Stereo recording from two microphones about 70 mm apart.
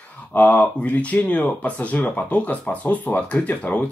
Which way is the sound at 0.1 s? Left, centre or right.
Left.